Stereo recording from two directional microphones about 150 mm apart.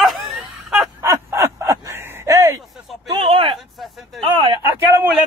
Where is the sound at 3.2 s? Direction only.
35° right (ahead or behind).